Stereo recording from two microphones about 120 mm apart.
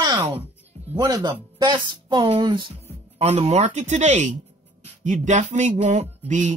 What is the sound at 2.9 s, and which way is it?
Speech, 60° right (ahead or behind).